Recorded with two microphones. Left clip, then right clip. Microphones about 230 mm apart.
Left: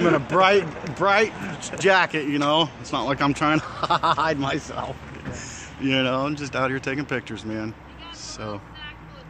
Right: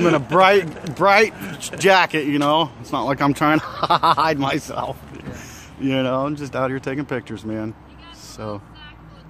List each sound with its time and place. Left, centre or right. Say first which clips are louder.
0.0 s speech: right 4 dB; right
5.8 s speech: right 2 dB; right